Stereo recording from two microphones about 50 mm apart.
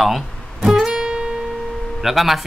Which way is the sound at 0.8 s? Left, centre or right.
Centre.